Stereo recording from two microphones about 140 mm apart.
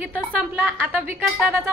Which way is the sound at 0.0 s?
10° right (ahead or behind).